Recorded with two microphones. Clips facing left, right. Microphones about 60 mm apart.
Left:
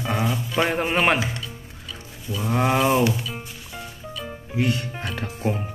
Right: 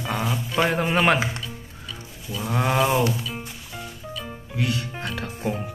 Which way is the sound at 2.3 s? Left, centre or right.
Centre.